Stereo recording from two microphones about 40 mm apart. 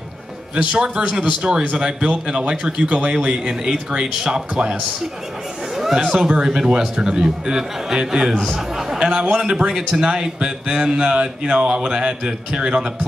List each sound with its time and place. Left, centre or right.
0.6 s speech: right
6.1 s a man's voice: centre
9.0 s speech: right